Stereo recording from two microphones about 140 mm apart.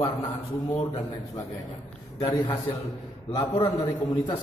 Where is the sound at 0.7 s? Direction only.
35° left (ahead or behind).